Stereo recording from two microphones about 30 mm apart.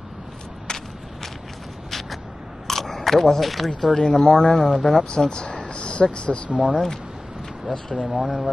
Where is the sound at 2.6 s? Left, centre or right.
Centre.